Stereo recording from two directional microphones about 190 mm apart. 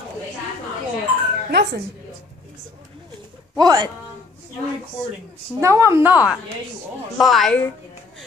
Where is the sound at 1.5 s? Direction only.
60° right (ahead or behind).